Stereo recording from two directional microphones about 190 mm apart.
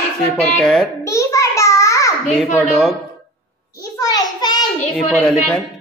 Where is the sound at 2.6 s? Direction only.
Centre (ahead or behind).